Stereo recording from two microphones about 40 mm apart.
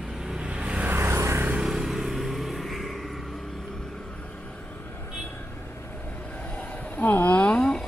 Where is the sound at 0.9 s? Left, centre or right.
Right.